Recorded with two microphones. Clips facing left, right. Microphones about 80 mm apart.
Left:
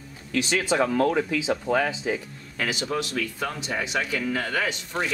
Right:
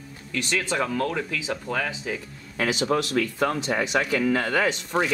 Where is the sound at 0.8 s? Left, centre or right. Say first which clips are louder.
Left 4 dB; left.